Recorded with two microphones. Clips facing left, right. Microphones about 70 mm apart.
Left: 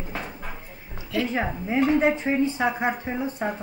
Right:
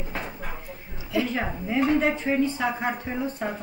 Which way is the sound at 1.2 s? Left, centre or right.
Centre.